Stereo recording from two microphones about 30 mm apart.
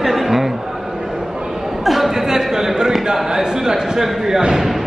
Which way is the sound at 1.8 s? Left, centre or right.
Centre.